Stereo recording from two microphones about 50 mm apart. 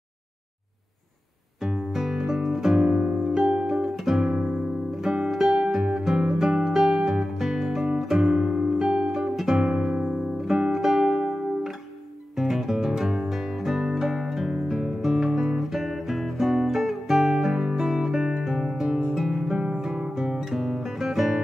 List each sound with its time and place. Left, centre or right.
1.6 s music: centre
4.3 s music: right
10.3 s music: centre
12.4 s music: centre
20.4 s guitar: centre